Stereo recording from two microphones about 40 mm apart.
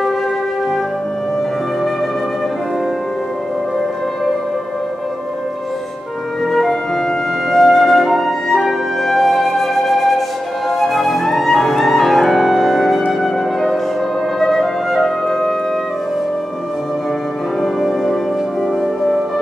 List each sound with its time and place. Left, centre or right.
6.5 s music: centre
14.4 s flute: centre
17.6 s music: centre